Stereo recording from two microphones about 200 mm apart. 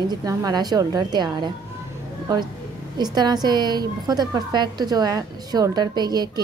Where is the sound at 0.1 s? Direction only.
15° right (ahead or behind).